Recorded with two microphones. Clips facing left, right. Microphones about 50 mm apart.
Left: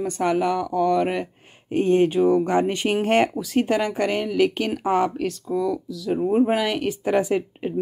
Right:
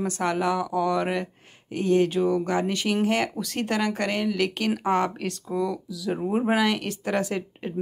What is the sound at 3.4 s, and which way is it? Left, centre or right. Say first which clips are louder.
Speech: left 5 dB; centre.